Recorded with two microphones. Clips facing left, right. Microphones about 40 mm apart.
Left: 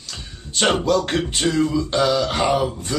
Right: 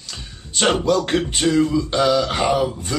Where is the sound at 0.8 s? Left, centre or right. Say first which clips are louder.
Right 1 dB; centre.